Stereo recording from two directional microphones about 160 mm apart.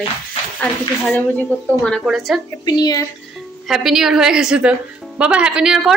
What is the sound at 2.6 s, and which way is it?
Speech, 25° left (ahead or behind).